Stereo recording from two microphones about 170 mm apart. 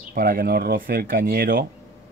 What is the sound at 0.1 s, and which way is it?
Speech, 60° right (ahead or behind).